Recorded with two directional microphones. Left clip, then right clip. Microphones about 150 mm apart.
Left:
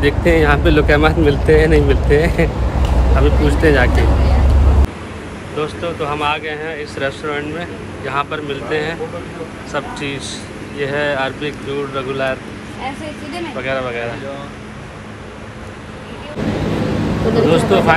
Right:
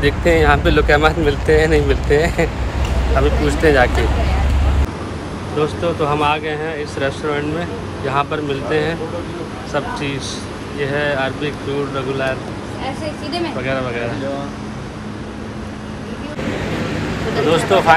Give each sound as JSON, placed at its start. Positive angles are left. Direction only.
{"t": 0.0, "sound": "speech", "side_deg": 10}
{"t": 5.6, "sound": "speech", "side_deg": -20}
{"t": 13.6, "sound": "speech", "side_deg": -15}
{"t": 17.5, "sound": "speech", "side_deg": 10}